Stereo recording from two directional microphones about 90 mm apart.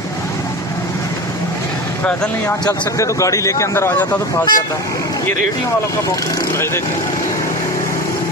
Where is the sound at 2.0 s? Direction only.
15° left (ahead or behind).